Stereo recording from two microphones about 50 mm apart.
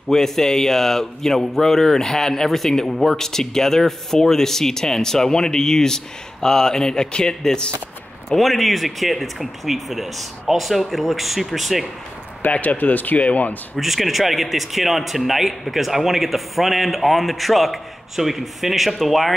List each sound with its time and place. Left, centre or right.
0.1 s speech: centre
8.4 s speech: centre
12.4 s speech: left
13.7 s speech: centre